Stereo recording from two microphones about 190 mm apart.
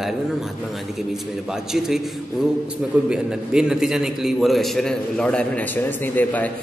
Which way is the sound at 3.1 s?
5° right (ahead or behind).